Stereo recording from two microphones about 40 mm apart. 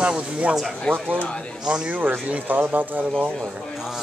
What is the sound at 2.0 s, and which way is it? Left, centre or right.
Speech, right.